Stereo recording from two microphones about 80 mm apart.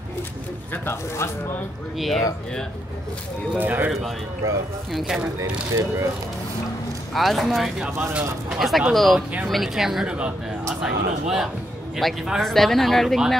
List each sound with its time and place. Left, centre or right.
0.8 s speech: left
2.0 s speech: centre
3.5 s speech: right
4.9 s speech: centre
5.4 s speech: right
7.2 s speech: centre